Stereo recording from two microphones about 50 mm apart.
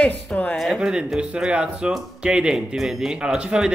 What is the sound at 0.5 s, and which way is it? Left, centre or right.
Speech, centre.